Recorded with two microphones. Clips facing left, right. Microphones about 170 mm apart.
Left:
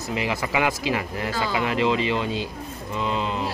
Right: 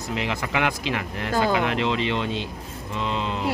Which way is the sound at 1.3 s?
55° right (ahead or behind).